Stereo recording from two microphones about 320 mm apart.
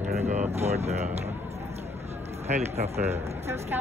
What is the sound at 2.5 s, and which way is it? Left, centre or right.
Speech, centre.